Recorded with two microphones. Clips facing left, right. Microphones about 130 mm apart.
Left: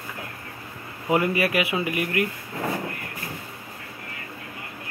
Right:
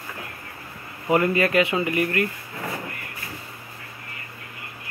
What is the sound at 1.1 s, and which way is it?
Speech, 15° left (ahead or behind).